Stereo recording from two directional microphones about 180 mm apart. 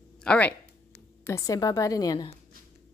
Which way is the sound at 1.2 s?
15° left (ahead or behind).